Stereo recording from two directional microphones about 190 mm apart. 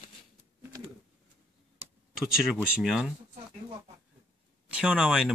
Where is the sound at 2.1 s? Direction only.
Centre (ahead or behind).